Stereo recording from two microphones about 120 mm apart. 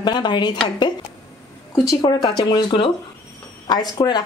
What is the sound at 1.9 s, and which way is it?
A woman's voice, 35° left (ahead or behind).